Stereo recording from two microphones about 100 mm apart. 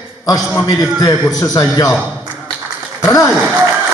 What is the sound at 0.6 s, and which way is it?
A man's voice, 35° left (ahead or behind).